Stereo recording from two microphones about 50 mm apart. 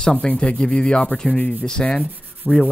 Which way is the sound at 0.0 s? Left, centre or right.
Centre.